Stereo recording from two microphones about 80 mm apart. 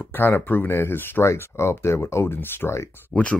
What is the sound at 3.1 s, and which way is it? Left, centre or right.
Speech, centre.